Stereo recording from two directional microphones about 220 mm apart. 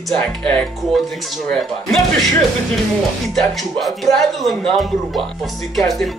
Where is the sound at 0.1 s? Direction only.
10° left (ahead or behind).